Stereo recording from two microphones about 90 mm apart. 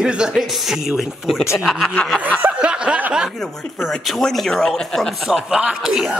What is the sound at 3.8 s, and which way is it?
A man's voice, centre (ahead or behind).